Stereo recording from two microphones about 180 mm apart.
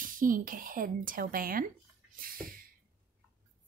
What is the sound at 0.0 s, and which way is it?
A woman's voice, 50° right (ahead or behind).